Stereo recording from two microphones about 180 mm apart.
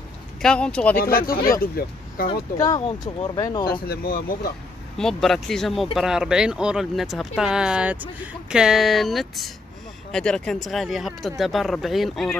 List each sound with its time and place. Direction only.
0.4 s speech: 5° left (ahead or behind)
0.9 s speech: 55° left (ahead or behind)
2.5 s speech: 20° left (ahead or behind)
3.8 s speech: 60° left (ahead or behind)
4.9 s speech: centre (ahead or behind)